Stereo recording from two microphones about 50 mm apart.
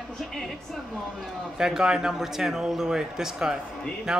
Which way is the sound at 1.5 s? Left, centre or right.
Centre.